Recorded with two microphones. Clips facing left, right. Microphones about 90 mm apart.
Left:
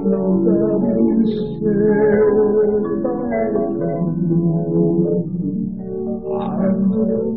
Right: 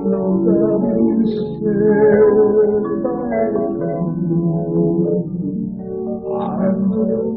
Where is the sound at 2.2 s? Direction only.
15° right (ahead or behind).